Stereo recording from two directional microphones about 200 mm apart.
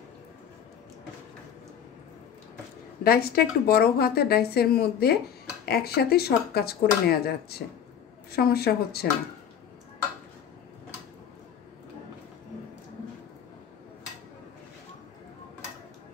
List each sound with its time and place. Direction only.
3.0 s a woman's voice: 50° left (ahead or behind)